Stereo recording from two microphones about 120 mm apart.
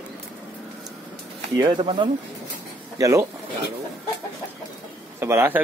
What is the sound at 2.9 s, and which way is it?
Speech, 30° right (ahead or behind).